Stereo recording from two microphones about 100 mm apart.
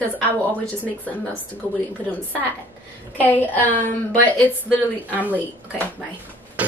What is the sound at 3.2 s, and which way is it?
A woman's voice, 15° left (ahead or behind).